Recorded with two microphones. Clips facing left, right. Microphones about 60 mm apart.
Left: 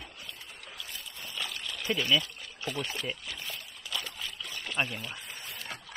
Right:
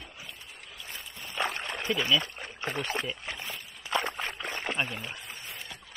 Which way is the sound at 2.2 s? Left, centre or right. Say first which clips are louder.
Right 4 dB; right.